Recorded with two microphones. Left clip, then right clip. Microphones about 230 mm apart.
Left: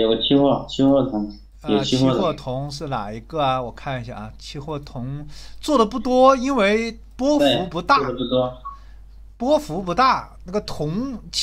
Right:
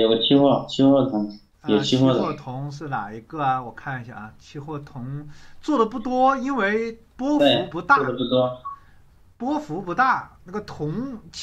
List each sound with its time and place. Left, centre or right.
0.0 s speech: centre
2.4 s speech: left
7.3 s speech: centre
7.7 s speech: left
8.1 s speech: centre
9.4 s speech: left